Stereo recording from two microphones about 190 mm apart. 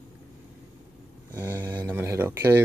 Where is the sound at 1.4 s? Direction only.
10° right (ahead or behind).